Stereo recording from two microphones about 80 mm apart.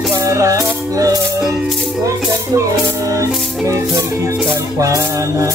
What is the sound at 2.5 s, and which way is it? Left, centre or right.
Music, right.